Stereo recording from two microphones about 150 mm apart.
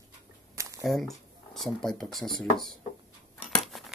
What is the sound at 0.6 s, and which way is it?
Squish, 20° right (ahead or behind).